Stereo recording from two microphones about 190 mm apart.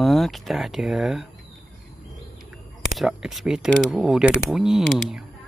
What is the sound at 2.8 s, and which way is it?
Speech, centre (ahead or behind).